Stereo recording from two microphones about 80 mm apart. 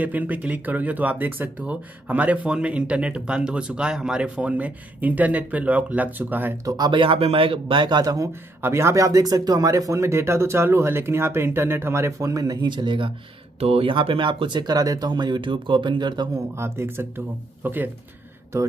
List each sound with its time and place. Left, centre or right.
0.0 s speech: centre
6.9 s speech: right
8.0 s speech: right
8.3 s speech: right
12.6 s speech: right
16.3 s speech: right
18.5 s speech: right